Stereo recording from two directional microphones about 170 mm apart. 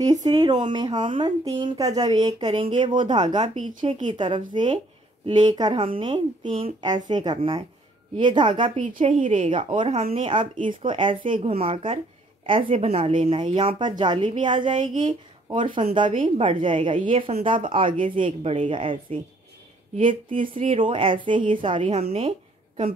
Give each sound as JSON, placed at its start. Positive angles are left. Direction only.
{"t": 0.0, "sound": "a woman's voice", "side_deg": -20}
{"t": 9.2, "sound": "a woman's voice", "side_deg": -45}